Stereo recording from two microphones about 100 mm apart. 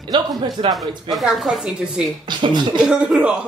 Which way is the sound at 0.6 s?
65° right (ahead or behind).